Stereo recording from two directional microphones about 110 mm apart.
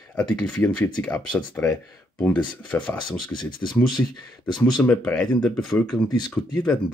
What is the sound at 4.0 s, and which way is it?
Speech, 20° left (ahead or behind).